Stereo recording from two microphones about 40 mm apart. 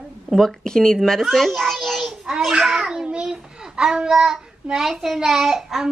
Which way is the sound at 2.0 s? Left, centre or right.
Centre.